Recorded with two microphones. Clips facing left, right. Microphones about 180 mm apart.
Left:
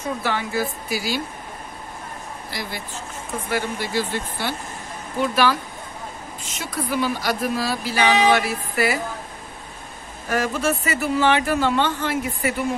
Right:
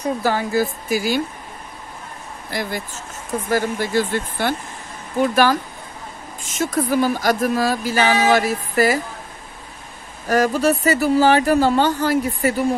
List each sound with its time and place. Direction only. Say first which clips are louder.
0.0 s speech: right 5 dB; 40° right (ahead or behind)
2.5 s speech: right 7 dB; 45° right (ahead or behind)
10.2 s speech: right 5 dB; 40° right (ahead or behind)